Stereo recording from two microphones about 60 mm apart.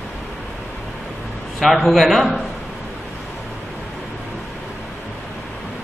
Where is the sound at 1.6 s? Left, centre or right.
Centre.